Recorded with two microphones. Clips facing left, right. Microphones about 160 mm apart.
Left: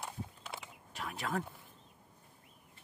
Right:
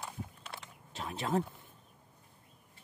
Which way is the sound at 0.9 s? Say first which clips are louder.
Right 4 dB; 25° right (ahead or behind).